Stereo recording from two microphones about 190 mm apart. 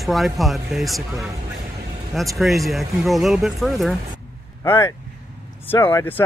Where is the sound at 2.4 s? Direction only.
Centre (ahead or behind).